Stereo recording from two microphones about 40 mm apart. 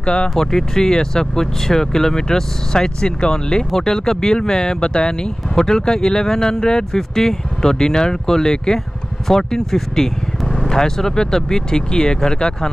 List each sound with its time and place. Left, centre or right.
0.0 s speech: left
0.3 s speech: centre